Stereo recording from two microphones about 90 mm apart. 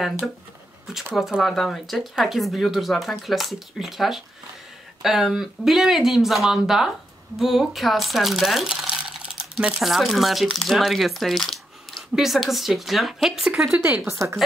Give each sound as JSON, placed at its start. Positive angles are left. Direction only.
{"t": 1.1, "sound": "speech", "side_deg": 0}
{"t": 9.8, "sound": "speech", "side_deg": 0}